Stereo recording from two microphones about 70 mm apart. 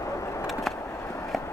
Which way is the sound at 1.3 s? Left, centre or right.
Centre.